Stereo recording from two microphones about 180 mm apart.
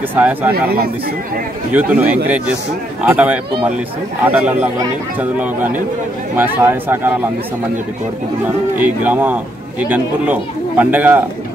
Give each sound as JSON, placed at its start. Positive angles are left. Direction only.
{"t": 0.1, "sound": "speech", "side_deg": -10}
{"t": 1.7, "sound": "speech", "side_deg": -10}
{"t": 8.7, "sound": "speech", "side_deg": -10}